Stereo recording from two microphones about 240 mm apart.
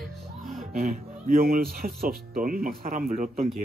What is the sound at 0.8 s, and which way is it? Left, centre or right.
Speech, right.